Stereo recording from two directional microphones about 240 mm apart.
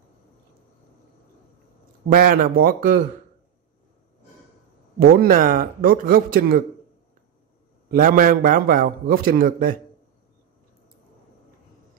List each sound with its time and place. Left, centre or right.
2.0 s a man's voice: right
4.9 s a man's voice: right
7.9 s a man's voice: right